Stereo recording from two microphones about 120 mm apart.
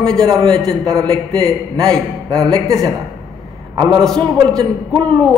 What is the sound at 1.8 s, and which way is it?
Speech, 5° left (ahead or behind).